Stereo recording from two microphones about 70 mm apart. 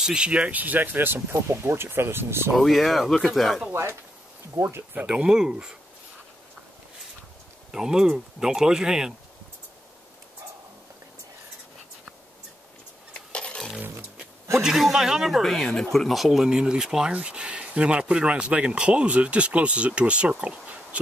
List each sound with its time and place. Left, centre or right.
0.0 s speech: centre; by 2.5 s right
2.5 s speech: centre
4.6 s speech: right
5.0 s speech: centre
7.7 s speech: centre
13.1 s a sound: centre
14.6 s speech: centre